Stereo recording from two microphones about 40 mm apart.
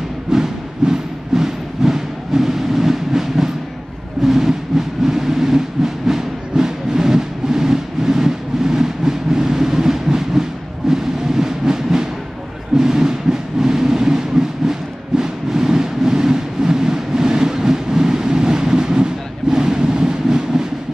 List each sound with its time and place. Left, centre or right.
0.3 s music: centre
4.2 s vehicle: centre
6.0 s music: centre
10.9 s a sound: centre